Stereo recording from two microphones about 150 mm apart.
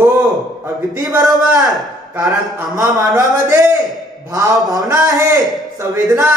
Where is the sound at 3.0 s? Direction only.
25° right (ahead or behind).